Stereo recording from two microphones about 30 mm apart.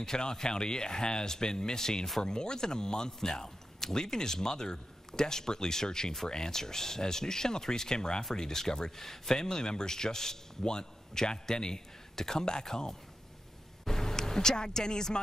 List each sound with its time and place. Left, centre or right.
0.0 s a man's voice: left
13.8 s vehicle: centre